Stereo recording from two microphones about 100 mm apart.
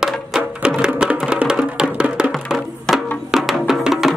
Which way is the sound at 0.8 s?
10° right (ahead or behind).